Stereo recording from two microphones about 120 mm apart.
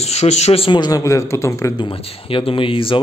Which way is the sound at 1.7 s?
45° left (ahead or behind).